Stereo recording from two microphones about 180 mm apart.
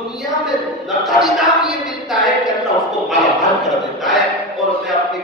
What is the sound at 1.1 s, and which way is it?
Speech, centre (ahead or behind).